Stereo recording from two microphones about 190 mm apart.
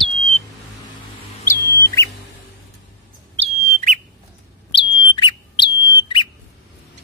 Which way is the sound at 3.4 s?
40° right (ahead or behind).